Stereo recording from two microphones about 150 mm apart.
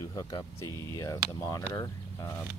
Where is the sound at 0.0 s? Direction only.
20° left (ahead or behind).